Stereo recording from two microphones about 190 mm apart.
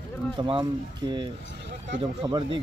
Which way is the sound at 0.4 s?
25° right (ahead or behind).